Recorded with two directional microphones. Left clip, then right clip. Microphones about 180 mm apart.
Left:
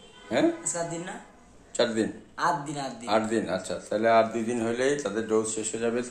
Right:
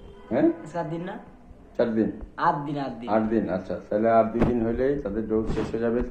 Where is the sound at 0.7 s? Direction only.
15° left (ahead or behind).